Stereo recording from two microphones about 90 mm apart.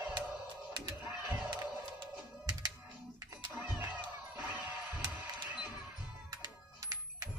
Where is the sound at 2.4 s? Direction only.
50° right (ahead or behind).